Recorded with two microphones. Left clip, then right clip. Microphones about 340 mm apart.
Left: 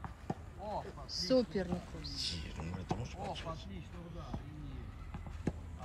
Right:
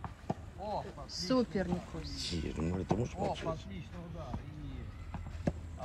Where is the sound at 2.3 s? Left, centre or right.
Centre.